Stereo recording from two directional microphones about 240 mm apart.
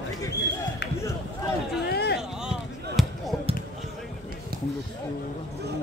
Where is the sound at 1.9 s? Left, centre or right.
Left.